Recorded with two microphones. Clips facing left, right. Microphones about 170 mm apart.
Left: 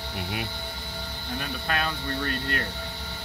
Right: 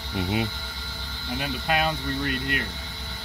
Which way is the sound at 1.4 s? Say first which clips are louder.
Right 5 dB; 15° right (ahead or behind).